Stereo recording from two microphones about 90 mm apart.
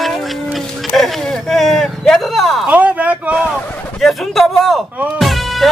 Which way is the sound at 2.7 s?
15° right (ahead or behind).